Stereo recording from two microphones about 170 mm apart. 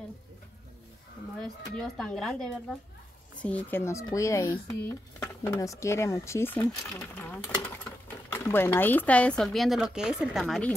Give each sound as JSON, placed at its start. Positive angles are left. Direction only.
{"t": 1.8, "sound": "speech", "side_deg": 5}